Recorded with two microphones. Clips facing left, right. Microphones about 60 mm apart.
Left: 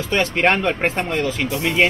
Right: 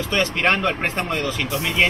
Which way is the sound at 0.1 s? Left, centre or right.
Centre.